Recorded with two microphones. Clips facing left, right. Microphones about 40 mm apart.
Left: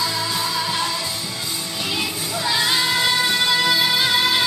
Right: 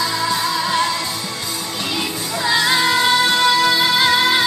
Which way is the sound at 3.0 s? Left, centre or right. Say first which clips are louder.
Right 4 dB; right.